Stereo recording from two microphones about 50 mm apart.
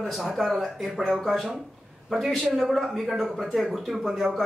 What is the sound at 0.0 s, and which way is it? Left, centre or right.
A woman's voice, centre.